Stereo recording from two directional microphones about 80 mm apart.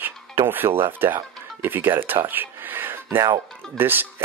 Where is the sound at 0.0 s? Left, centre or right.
Right.